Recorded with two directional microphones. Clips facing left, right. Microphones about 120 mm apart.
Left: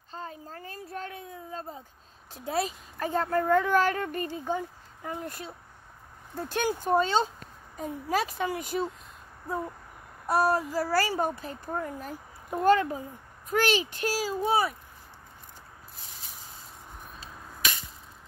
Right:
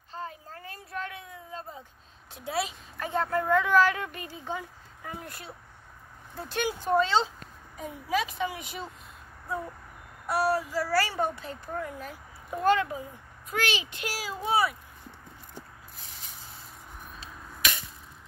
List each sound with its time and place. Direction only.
0.1 s a sound: 35° left (ahead or behind)
2.3 s speech: 40° left (ahead or behind)
6.6 s speech: 45° left (ahead or behind)
10.2 s child singing: 45° left (ahead or behind)
11.3 s speech: 40° left (ahead or behind)
16.0 s spray: 25° left (ahead or behind)
17.2 s a sound: 40° left (ahead or behind)